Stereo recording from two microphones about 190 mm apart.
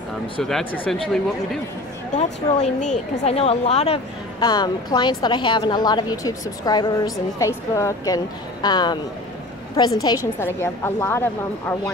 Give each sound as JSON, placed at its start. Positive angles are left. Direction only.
{"t": 0.4, "sound": "speech", "side_deg": 0}
{"t": 2.1, "sound": "a woman's voice", "side_deg": 40}
{"t": 4.4, "sound": "a woman's voice", "side_deg": 20}
{"t": 10.0, "sound": "a woman's voice", "side_deg": 15}